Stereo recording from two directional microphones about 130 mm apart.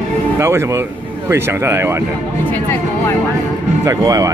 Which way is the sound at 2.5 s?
20° left (ahead or behind).